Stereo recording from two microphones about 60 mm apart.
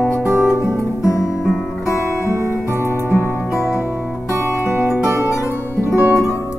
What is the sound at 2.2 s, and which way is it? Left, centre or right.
Music, right.